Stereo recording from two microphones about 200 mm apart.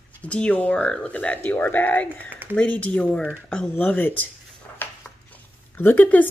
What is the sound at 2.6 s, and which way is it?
Speech, 5° left (ahead or behind).